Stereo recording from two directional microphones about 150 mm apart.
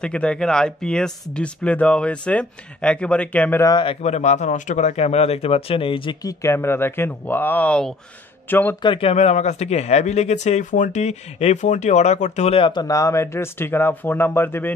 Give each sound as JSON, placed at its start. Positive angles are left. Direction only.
{"t": 0.0, "sound": "speech", "side_deg": 5}
{"t": 3.6, "sound": "speech", "side_deg": 30}
{"t": 6.4, "sound": "speech", "side_deg": 15}
{"t": 8.8, "sound": "speech", "side_deg": 40}